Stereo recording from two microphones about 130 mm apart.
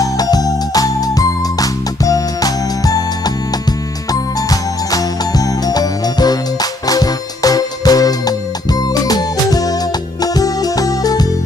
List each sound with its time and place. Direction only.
0.0 s music: 30° left (ahead or behind)